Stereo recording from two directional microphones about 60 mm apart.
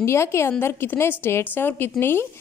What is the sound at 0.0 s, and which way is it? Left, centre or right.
A woman's voice, left.